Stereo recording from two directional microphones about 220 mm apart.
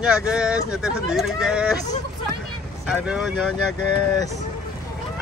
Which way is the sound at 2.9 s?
5° right (ahead or behind).